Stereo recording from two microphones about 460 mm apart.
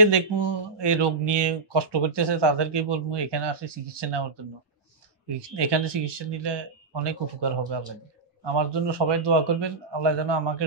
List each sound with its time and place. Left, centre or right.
0.0 s speech: right
5.6 s speech: right